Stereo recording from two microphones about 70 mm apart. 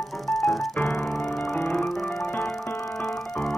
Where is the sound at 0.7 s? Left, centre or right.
Left.